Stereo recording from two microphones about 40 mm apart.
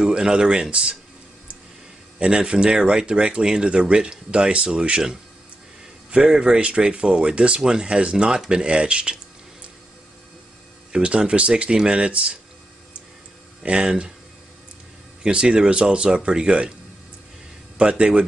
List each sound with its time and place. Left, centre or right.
0.0 s speech: centre
2.1 s speech: right
6.0 s speech: right
10.9 s speech: right
13.6 s speech: right
15.2 s speech: right
17.7 s speech: right